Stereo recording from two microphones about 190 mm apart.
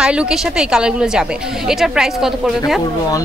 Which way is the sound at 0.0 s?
5° right (ahead or behind).